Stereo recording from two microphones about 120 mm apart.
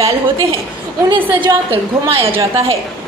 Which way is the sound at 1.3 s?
45° right (ahead or behind).